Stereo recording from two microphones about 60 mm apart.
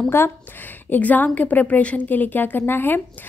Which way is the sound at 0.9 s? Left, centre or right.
Left.